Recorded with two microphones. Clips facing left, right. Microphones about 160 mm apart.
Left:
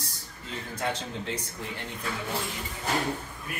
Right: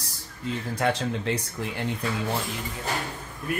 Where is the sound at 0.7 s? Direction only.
75° right (ahead or behind).